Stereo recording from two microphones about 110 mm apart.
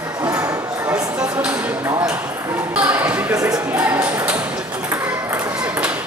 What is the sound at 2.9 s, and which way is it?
Speech, 15° right (ahead or behind).